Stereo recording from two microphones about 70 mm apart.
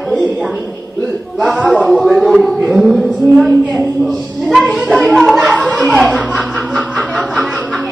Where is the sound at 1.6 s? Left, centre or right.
Centre.